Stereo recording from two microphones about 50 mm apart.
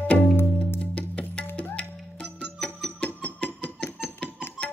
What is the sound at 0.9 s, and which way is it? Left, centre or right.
Music, left.